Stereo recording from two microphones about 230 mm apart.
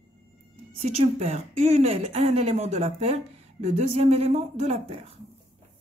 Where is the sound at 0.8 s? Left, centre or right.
Right.